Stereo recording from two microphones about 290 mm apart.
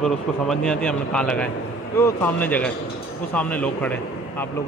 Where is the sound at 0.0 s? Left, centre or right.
Centre.